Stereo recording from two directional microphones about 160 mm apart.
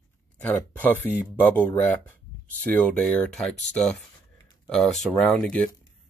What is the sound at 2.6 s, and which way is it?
Speech, 10° left (ahead or behind).